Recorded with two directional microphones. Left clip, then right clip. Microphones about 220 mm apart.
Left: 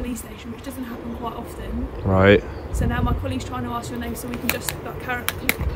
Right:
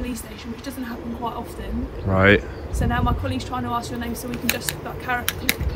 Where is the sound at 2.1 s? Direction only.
10° left (ahead or behind).